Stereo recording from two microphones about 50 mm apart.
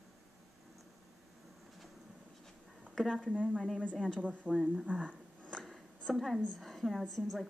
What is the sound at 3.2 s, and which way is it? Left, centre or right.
Speech, left.